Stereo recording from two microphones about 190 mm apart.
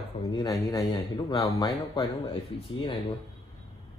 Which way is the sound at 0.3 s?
20° left (ahead or behind).